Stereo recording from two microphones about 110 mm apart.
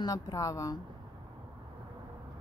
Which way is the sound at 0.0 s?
35° left (ahead or behind).